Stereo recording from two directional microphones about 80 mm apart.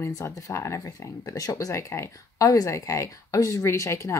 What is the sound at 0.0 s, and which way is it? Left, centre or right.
Speech, left.